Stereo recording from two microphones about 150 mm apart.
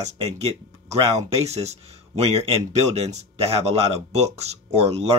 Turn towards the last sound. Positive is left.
turn(degrees=-45)  # may be behind; listen again after turning